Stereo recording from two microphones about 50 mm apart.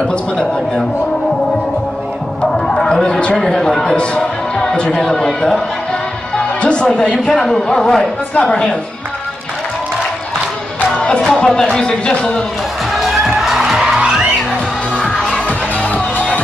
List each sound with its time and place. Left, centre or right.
0.1 s speech: centre
2.4 s speech: centre
6.3 s music: left
7.0 s speech: centre
11.0 s music: centre
11.3 s speech: centre
13.0 s music: centre
15.1 s music: left